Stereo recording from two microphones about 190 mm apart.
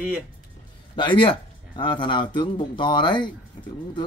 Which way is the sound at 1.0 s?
25° left (ahead or behind).